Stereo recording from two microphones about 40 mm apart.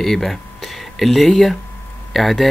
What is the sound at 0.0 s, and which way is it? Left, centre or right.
Speech, centre.